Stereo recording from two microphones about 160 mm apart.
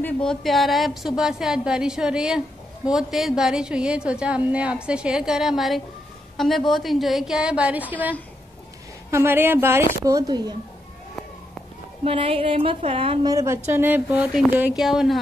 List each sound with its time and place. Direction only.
0.0 s a woman's voice: 5° left (ahead or behind); by 10.5 s 25° right (ahead or behind)
12.0 s speech: 35° right (ahead or behind)
13.3 s a woman's voice: 20° right (ahead or behind); by 15.1 s centre (ahead or behind)